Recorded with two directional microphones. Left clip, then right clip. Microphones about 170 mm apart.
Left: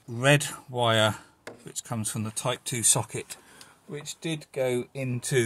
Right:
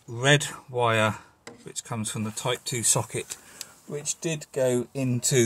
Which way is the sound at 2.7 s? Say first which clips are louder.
Right 1 dB; 20° left (ahead or behind).